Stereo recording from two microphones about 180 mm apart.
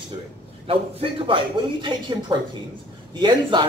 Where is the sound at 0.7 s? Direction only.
30° right (ahead or behind).